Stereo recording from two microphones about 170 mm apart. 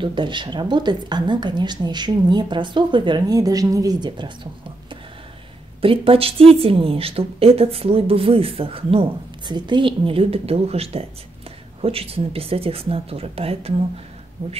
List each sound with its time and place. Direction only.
0.0 s a woman's voice: 30° right (ahead or behind)
5.8 s speech: 30° right (ahead or behind)